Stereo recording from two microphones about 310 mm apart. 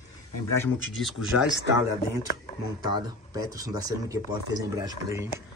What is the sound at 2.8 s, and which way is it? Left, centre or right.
Speech, centre.